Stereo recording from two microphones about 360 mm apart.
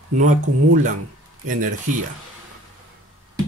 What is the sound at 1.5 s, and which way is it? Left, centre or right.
Speech, right.